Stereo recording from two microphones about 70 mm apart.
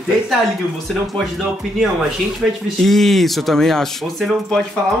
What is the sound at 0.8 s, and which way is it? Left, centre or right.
Speech, centre.